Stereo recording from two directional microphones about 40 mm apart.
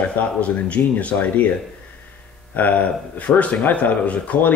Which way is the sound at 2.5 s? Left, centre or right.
Left.